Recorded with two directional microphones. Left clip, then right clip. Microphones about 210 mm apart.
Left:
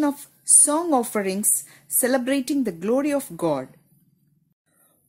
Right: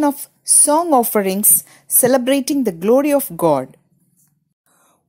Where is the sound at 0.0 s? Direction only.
25° right (ahead or behind).